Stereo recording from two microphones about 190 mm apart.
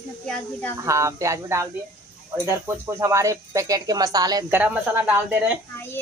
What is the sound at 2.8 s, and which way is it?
Speech, 15° right (ahead or behind).